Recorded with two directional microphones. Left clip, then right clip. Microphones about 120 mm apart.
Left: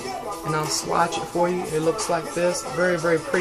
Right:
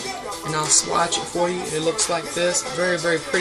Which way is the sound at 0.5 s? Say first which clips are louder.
Right 3 dB; 15° right (ahead or behind).